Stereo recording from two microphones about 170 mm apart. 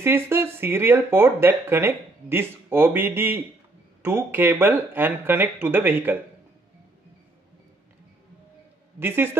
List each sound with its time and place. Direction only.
0.0 s speech: 15° right (ahead or behind)
9.0 s speech: 15° right (ahead or behind)